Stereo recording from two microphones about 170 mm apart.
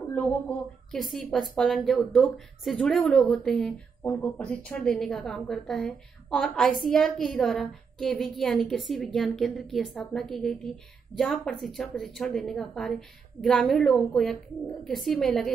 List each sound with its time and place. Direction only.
0.1 s a woman's voice: 5° left (ahead or behind)